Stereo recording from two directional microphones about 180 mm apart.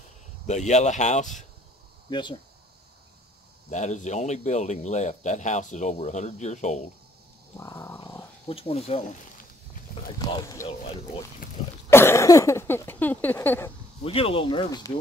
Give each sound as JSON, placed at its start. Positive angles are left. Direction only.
{"t": 0.5, "sound": "speech", "side_deg": 40}
{"t": 2.0, "sound": "speech", "side_deg": 25}
{"t": 3.7, "sound": "speech", "side_deg": 40}
{"t": 7.5, "sound": "dog", "side_deg": 15}
{"t": 8.5, "sound": "speech", "side_deg": 35}
{"t": 10.1, "sound": "boat", "side_deg": 20}
{"t": 11.9, "sound": "a sound", "side_deg": 15}
{"t": 14.0, "sound": "speech", "side_deg": 30}